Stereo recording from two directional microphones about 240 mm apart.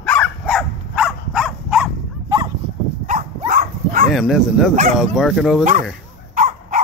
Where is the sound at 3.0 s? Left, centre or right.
Right.